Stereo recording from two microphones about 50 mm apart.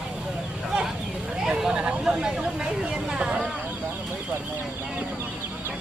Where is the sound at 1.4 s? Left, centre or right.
Centre.